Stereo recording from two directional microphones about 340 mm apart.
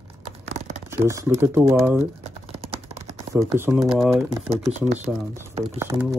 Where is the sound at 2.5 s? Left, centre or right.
Centre.